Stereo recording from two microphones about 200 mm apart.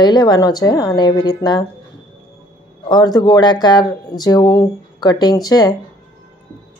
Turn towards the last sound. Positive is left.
turn(degrees=20)  # may be behind; listen again after turning